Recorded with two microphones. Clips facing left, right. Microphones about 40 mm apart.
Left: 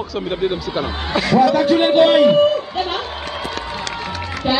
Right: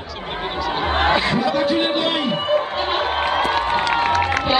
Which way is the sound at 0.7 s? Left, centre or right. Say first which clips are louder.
Right 5 dB; right.